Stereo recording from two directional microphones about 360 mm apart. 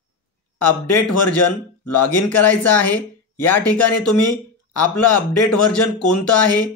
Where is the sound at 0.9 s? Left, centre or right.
Left.